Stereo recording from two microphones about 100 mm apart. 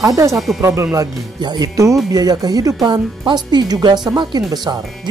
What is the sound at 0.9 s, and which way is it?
Speech, 45° right (ahead or behind).